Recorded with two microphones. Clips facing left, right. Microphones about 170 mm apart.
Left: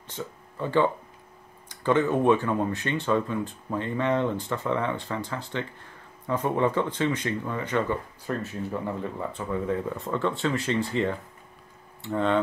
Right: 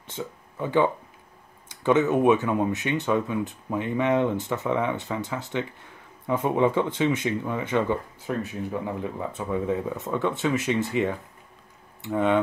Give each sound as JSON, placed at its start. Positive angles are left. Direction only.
{"t": 0.1, "sound": "speech", "side_deg": -15}